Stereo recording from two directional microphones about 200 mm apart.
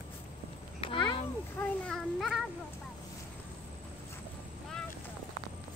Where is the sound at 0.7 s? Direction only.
25° left (ahead or behind).